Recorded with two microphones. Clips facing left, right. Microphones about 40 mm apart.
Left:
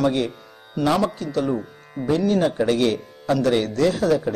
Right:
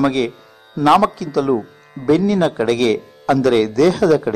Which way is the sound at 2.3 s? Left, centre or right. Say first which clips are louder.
Right 3 dB; right.